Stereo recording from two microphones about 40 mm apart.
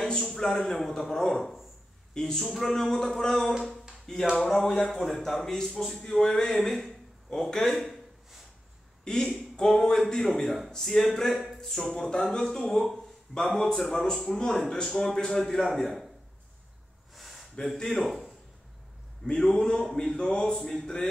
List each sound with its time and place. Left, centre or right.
0.2 s a sound: centre
0.7 s a man's voice: centre
2.1 s a man's voice: centre
4.0 s a sound: centre
4.8 s a man's voice: centre
9.0 s a man's voice: centre
17.1 s gasp: centre
17.9 s speech: centre
19.4 s a man's voice: centre